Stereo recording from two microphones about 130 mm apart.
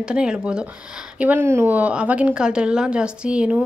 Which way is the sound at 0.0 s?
5° right (ahead or behind).